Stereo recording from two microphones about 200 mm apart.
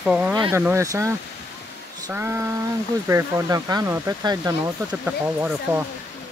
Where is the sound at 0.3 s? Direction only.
15° right (ahead or behind).